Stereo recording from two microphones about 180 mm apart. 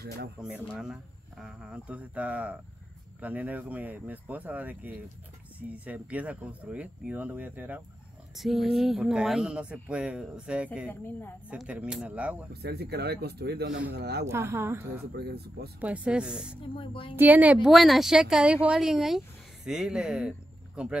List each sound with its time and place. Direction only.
0.4 s a woman's voice: 5° right (ahead or behind)
10.9 s a woman's voice: 10° left (ahead or behind)
11.5 s speech: 5° right (ahead or behind)
12.6 s speech: 65° right (ahead or behind)
14.2 s speech: 15° right (ahead or behind)
15.1 s speech: 60° right (ahead or behind)
15.8 s a woman's voice: 5° right (ahead or behind)
16.7 s a woman's voice: 30° left (ahead or behind)
17.1 s a woman's voice: 10° right (ahead or behind)